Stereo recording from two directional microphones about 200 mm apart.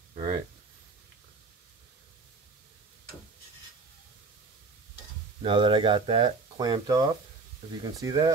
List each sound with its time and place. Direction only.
5.4 s speech: 25° right (ahead or behind)